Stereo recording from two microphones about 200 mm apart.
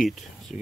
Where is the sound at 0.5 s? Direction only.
10° right (ahead or behind).